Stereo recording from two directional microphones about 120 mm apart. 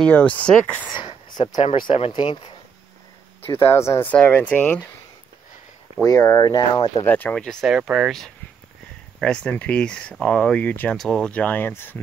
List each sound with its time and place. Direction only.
0.0 s speech: 10° left (ahead or behind)
0.9 s a sound: 40° left (ahead or behind)
1.9 s speech: 55° left (ahead or behind)
2.1 s speech: 40° left (ahead or behind)
3.4 s speech: 20° left (ahead or behind)
6.0 s speech: 25° left (ahead or behind)
7.1 s speech: 15° left (ahead or behind)
7.4 s speech: 5° right (ahead or behind)
9.2 s speech: 10° left (ahead or behind)